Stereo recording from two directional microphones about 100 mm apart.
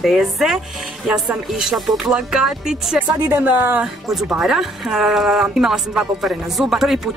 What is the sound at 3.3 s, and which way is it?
Speech, 20° right (ahead or behind).